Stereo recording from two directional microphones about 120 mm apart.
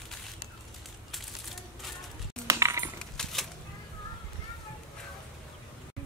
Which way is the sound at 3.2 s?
5° left (ahead or behind).